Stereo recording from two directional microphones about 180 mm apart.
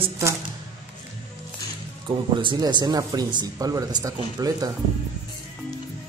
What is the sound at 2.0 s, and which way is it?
Speech, 25° right (ahead or behind).